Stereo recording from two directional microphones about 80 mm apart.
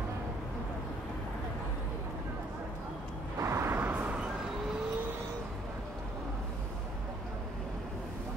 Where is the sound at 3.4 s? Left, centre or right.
Right.